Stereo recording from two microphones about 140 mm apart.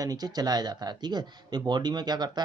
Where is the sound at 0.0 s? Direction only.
30° right (ahead or behind).